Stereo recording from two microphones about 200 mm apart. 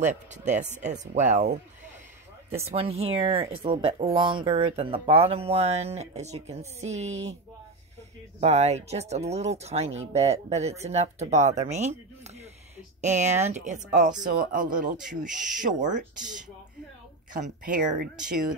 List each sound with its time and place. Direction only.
0.0 s speech: 40° right (ahead or behind)
8.4 s speech: 35° right (ahead or behind)
13.0 s speech: 35° right (ahead or behind)
15.2 s speech: centre (ahead or behind)
15.6 s speech: 40° right (ahead or behind)
16.2 s speech: centre (ahead or behind)
17.3 s speech: 40° right (ahead or behind)